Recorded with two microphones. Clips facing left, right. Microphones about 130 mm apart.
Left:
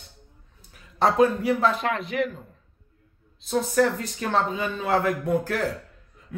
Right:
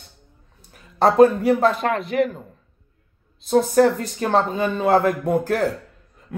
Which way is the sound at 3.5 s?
40° right (ahead or behind).